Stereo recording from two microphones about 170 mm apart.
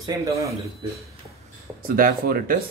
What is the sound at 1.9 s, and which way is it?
Speech, 60° right (ahead or behind).